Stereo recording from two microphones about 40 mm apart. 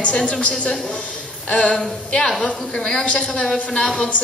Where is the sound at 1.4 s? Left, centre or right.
Left.